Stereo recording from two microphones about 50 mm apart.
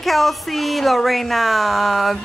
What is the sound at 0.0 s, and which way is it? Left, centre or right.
A man's voice, centre.